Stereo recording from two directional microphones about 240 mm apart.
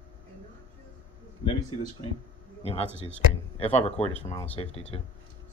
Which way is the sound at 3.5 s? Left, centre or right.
Left.